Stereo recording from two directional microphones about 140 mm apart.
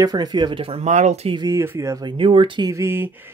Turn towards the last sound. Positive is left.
turn(degrees=-15)  # may be behind; listen again after turning